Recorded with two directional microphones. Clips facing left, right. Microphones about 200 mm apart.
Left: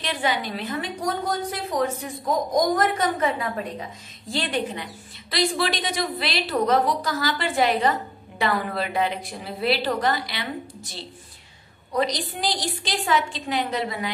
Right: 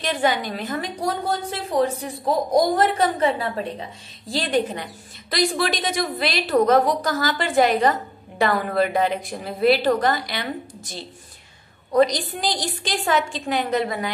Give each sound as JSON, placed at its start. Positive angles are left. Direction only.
{"t": 0.0, "sound": "a woman's voice", "side_deg": -45}
{"t": 11.9, "sound": "a woman's voice", "side_deg": -50}